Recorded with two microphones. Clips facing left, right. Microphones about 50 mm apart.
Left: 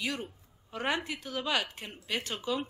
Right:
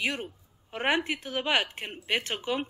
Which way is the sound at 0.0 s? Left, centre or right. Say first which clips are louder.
Right 4 dB; right.